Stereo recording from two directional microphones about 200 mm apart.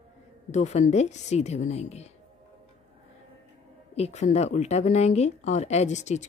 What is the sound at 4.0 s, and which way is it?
A woman's voice, 35° left (ahead or behind).